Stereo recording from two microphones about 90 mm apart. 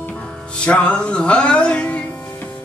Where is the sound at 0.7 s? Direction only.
15° left (ahead or behind).